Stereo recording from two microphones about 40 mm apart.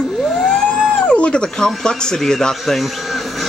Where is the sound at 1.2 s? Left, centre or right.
Left.